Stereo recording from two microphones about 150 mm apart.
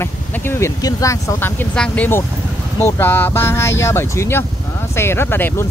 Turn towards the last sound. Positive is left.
turn(degrees=15)  # may be behind; listen again after turning